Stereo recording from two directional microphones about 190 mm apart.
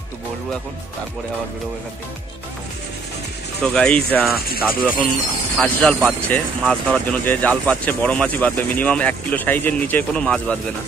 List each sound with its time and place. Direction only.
3.6 s speech: 5° left (ahead or behind)
4.1 s speech: 10° right (ahead or behind)
4.4 s speech: 55° left (ahead or behind)
5.6 s speech: 10° left (ahead or behind)